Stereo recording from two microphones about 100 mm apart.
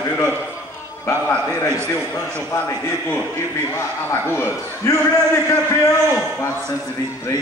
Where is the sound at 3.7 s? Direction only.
25° left (ahead or behind).